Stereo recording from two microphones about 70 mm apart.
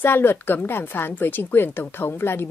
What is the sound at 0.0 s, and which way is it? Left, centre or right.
A woman's voice, left.